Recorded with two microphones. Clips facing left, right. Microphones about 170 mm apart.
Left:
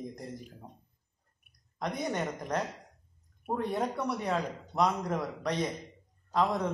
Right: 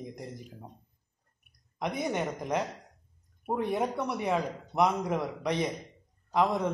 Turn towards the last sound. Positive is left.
turn(degrees=-10)  # may be behind; listen again after turning